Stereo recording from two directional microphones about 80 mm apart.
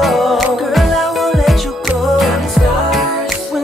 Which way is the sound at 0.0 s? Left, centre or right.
Centre.